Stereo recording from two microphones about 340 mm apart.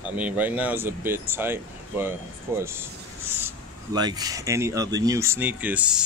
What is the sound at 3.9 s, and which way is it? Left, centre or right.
Speech, centre.